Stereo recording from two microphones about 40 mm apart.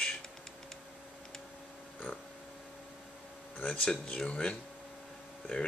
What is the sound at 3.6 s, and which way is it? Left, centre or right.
Speech, left.